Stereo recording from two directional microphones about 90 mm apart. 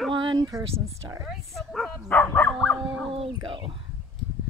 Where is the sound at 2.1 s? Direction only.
20° left (ahead or behind).